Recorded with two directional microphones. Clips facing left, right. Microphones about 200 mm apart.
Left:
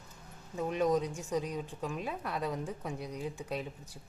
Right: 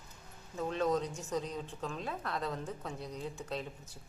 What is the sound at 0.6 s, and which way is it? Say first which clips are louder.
Speech: left 2 dB; 15° left (ahead or behind).